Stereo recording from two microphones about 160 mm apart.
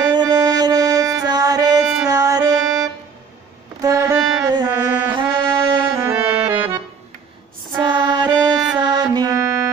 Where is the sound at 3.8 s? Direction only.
20° right (ahead or behind).